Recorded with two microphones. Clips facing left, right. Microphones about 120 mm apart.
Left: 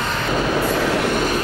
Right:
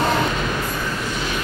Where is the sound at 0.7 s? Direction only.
80° left; by 1.2 s 65° left (ahead or behind).